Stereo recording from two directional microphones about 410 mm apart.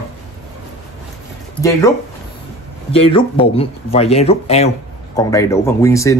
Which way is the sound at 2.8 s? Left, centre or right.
Centre.